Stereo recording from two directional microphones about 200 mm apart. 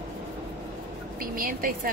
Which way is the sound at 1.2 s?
45° right (ahead or behind).